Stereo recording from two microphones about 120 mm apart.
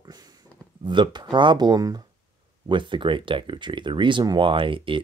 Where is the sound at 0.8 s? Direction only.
40° right (ahead or behind).